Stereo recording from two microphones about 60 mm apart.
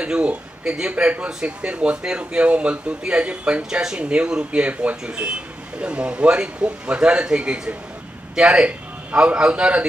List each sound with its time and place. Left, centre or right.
0.0 s a man's voice: centre